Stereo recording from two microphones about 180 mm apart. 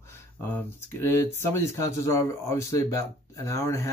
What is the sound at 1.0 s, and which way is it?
Speech, 15° left (ahead or behind).